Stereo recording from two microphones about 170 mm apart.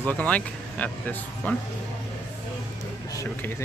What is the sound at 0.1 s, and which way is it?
Speech, 10° left (ahead or behind).